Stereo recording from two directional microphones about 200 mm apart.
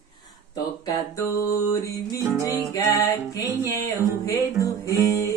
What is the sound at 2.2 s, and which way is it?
Music, 15° right (ahead or behind).